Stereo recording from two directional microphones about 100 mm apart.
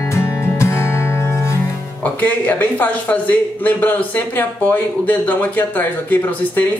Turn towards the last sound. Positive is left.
turn(degrees=20)  # may be behind; listen again after turning